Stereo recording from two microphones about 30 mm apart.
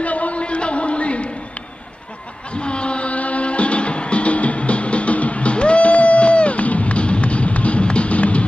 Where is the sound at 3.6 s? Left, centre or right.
Left.